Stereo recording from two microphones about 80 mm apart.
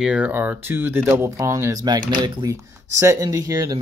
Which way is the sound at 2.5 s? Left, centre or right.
Right.